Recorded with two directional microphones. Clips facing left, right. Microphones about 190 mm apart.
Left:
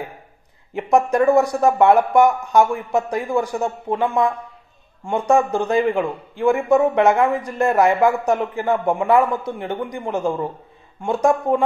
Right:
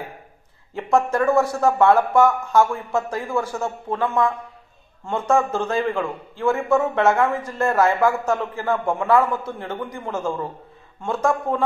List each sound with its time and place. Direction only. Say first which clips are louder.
0.7 s a man's voice: left 3 dB; 15° left (ahead or behind)